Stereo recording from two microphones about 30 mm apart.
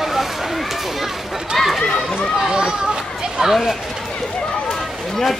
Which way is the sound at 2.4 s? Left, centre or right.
Right.